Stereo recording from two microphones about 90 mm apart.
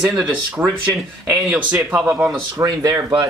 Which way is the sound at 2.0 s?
20° right (ahead or behind).